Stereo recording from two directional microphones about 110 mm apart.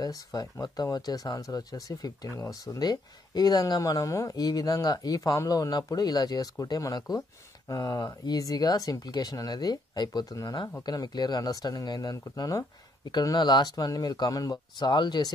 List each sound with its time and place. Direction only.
0.0 s speech: 35° left (ahead or behind)